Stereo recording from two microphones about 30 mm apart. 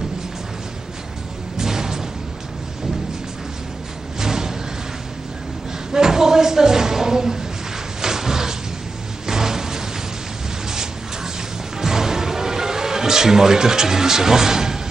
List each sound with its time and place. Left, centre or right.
1.6 s music: centre
4.2 s music: centre
5.9 s a sound: centre
9.2 s music: centre
11.8 s music: centre